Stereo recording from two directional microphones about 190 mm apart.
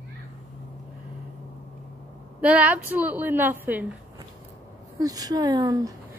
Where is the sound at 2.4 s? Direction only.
5° right (ahead or behind).